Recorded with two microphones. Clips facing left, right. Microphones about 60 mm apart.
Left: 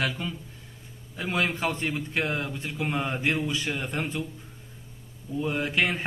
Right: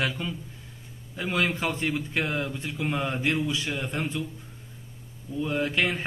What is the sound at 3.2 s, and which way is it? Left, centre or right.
Speech, left.